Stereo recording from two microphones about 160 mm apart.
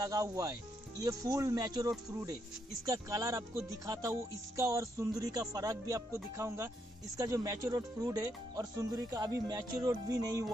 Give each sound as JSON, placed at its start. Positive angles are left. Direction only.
{"t": 0.0, "sound": "speech", "side_deg": -20}